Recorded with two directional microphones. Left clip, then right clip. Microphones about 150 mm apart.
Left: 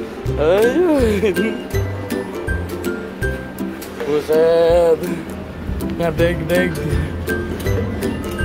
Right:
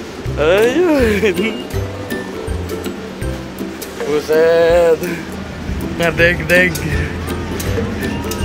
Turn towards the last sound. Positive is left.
turn(degrees=20)  # may be behind; listen again after turning